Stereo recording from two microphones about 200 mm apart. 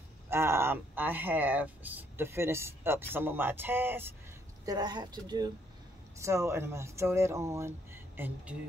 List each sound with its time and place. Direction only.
0.3 s a woman's voice: 10° right (ahead or behind)